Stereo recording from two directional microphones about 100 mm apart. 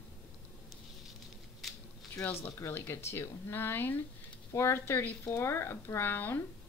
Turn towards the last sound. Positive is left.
turn(degrees=20)  # may be behind; listen again after turning